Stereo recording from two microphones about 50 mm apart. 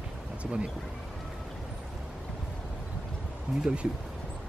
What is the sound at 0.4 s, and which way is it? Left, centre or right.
Speech, right.